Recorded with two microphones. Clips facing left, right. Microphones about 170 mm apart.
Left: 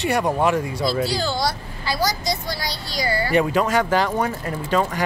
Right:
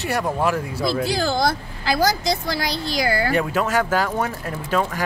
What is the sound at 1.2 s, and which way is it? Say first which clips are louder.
Speech: right 3 dB; 50° right (ahead or behind).